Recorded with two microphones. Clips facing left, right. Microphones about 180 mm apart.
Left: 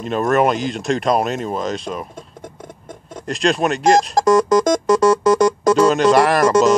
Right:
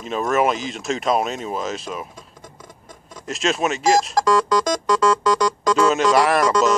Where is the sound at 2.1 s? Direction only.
55° left (ahead or behind).